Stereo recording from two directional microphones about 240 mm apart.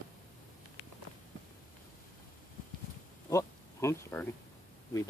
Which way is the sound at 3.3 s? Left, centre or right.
Centre.